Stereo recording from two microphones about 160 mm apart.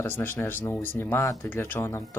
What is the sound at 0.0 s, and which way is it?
Speech, 15° left (ahead or behind).